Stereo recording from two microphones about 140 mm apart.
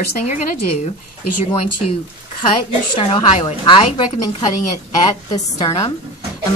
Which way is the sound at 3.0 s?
40° left (ahead or behind).